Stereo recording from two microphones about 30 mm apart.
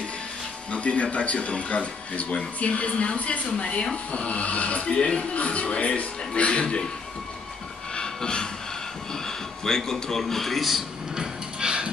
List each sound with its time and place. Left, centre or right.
0.7 s speech: left
4.8 s speech: left
7.9 s train: left
9.7 s speech: centre
10.2 s speech: centre
11.1 s music: right